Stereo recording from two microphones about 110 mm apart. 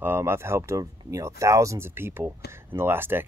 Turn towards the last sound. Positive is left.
turn(degrees=-20)  # may be behind; listen again after turning